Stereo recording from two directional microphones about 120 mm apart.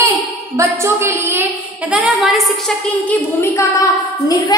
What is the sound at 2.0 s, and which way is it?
Speech, centre (ahead or behind).